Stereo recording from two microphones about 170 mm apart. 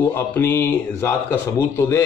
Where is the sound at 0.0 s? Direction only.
15° left (ahead or behind).